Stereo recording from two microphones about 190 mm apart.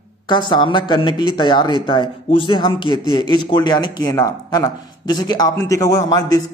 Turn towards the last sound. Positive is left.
turn(degrees=20)  # may be behind; listen again after turning